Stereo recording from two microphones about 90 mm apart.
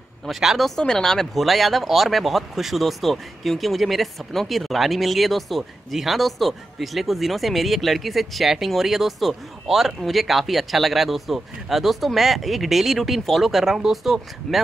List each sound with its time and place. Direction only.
0.2 s speech: 5° right (ahead or behind)